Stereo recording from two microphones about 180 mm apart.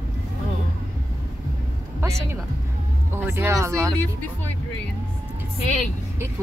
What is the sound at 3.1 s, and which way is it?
Speech, 10° right (ahead or behind).